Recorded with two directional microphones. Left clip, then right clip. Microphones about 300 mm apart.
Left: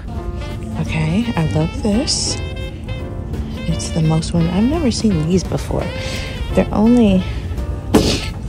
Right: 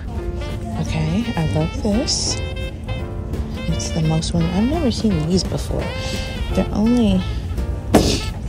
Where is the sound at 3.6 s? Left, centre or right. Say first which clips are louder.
Left 2 dB; centre.